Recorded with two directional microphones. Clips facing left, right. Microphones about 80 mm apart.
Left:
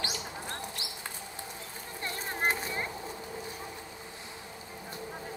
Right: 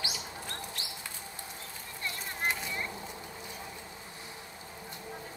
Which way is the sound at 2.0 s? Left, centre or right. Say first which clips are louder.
Left 3 dB; left.